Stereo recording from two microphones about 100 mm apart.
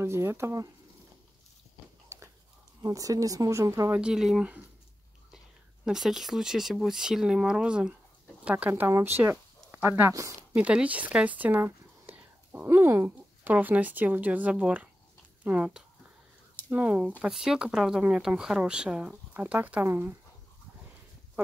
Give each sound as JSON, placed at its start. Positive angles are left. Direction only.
{"t": 0.0, "sound": "speech", "side_deg": -25}
{"t": 2.0, "sound": "a sound", "side_deg": -30}
{"t": 2.8, "sound": "speech", "side_deg": -35}
{"t": 3.9, "sound": "speech", "side_deg": -5}
{"t": 5.9, "sound": "speech", "side_deg": -5}
{"t": 10.5, "sound": "speech", "side_deg": -15}